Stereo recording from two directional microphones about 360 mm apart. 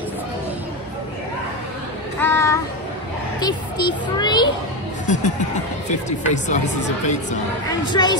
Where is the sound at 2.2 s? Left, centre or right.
Centre.